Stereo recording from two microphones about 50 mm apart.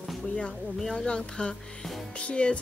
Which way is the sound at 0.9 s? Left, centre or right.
Centre.